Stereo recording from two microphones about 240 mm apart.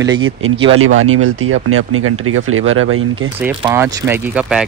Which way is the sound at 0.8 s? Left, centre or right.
Right.